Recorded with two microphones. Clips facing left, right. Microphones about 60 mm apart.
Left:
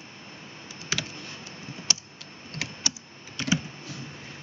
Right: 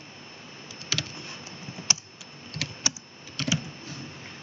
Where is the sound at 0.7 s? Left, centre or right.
Left.